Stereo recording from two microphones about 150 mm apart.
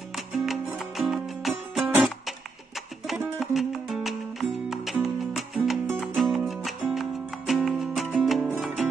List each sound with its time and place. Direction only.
0.3 s music: centre (ahead or behind)
3.3 s music: centre (ahead or behind)